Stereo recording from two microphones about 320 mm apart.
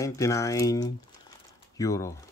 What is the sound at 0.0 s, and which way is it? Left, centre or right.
Speech, centre.